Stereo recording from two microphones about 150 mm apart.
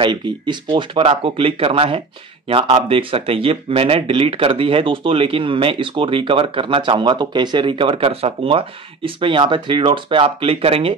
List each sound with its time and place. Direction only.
0.0 s speech: 30° right (ahead or behind)